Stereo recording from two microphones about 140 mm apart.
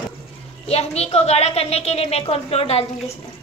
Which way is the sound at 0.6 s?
45° left (ahead or behind).